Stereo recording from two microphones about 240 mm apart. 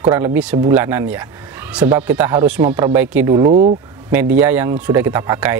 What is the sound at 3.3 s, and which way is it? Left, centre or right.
Speech, centre.